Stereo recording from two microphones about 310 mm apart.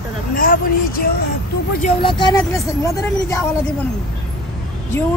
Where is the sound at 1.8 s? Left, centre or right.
Centre.